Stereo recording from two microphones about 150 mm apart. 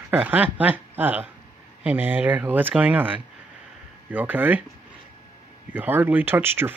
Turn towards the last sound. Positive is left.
turn(degrees=-15)  # may be behind; listen again after turning